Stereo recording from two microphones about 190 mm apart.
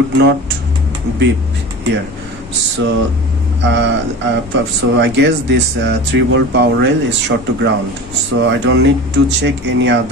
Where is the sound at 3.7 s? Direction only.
70° right (ahead or behind).